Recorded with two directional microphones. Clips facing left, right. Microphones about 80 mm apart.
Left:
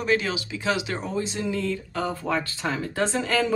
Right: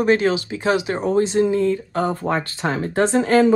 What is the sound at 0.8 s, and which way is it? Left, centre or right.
Speech, centre.